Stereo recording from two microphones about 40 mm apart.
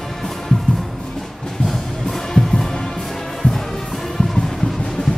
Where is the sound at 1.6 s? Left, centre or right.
Centre.